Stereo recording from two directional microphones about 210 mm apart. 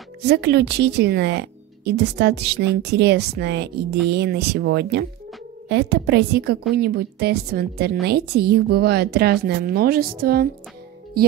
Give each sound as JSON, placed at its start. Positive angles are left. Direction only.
{"t": 0.2, "sound": "a woman's voice", "side_deg": -50}